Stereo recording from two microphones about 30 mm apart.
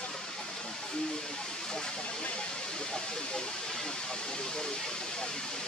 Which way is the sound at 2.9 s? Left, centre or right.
Left.